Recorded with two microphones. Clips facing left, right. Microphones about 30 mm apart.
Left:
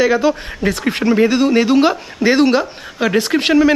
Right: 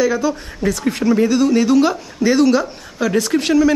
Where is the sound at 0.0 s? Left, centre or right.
Left.